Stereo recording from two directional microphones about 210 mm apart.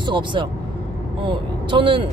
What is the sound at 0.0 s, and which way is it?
Speech, 20° right (ahead or behind).